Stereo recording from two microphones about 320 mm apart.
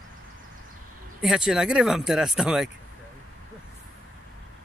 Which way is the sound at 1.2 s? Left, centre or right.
Centre.